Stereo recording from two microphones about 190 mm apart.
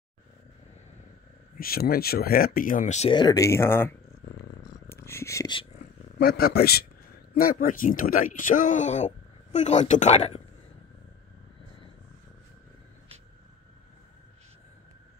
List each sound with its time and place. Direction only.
1.6 s speech: 50° left (ahead or behind); by 4.0 s 10° left (ahead or behind)
4.8 s a sound: 15° left (ahead or behind)
6.1 s a man's voice: 55° left (ahead or behind); by 10.4 s 30° left (ahead or behind)